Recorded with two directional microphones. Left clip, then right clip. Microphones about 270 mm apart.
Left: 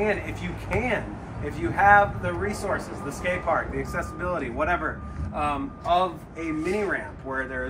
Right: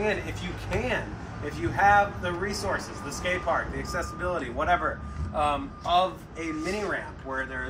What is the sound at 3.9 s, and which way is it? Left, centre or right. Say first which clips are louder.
Speech: even; centre.